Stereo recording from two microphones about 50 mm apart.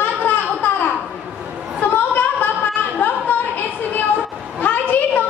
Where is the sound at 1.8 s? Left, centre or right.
Left.